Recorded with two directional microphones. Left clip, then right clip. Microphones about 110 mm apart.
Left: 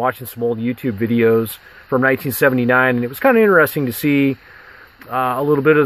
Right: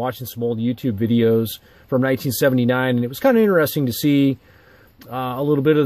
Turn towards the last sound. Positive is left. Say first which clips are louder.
# left 4 dB
turn(degrees=-25)  # may be behind; listen again after turning